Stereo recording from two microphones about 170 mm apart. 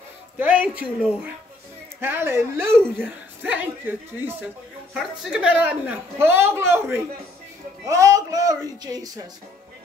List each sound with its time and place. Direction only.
0.4 s a woman's voice: 10° right (ahead or behind)
4.9 s a woman's voice: 5° right (ahead or behind)
7.8 s music: 20° right (ahead or behind)
8.8 s a woman's voice: 20° right (ahead or behind)